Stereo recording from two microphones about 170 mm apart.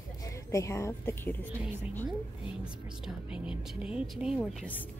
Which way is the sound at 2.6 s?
5° right (ahead or behind).